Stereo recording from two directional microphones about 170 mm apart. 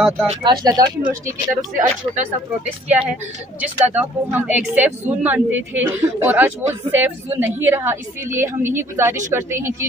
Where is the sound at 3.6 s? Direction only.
10° right (ahead or behind).